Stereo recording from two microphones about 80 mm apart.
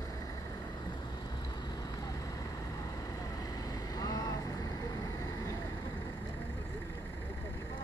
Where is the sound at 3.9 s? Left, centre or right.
Left.